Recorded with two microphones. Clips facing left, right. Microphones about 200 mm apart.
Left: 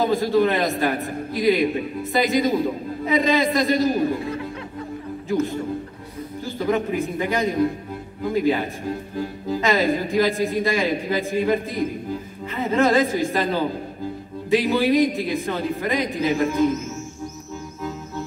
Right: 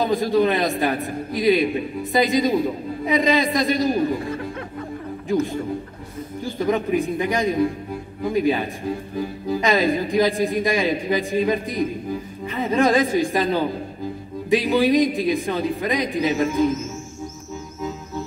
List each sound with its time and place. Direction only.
0.0 s speech: 15° right (ahead or behind)
5.3 s speech: 15° right (ahead or behind)